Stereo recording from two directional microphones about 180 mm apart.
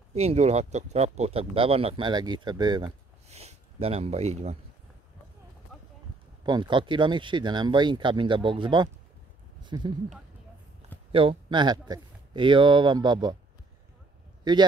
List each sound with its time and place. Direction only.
0.1 s speech: 35° right (ahead or behind)
3.3 s a sound: 35° right (ahead or behind)
6.4 s speech: 25° right (ahead or behind)
11.1 s speech: 30° right (ahead or behind)
14.5 s speech: 25° right (ahead or behind)